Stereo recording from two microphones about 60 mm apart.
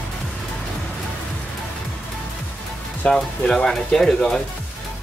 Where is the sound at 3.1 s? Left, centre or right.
Centre.